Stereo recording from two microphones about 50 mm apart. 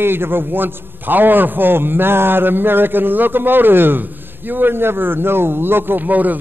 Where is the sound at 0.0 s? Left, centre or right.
Right.